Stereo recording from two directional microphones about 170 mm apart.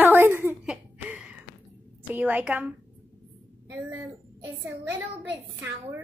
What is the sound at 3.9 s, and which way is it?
A child's voice, 15° right (ahead or behind).